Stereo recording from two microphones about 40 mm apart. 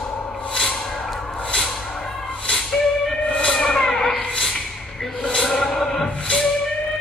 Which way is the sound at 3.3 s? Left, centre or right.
Left.